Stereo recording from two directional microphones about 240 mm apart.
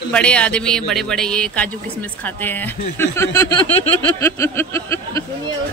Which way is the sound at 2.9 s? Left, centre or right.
Centre.